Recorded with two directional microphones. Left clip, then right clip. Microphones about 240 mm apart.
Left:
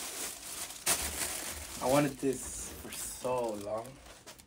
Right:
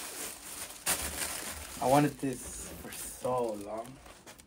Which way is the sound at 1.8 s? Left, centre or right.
Centre.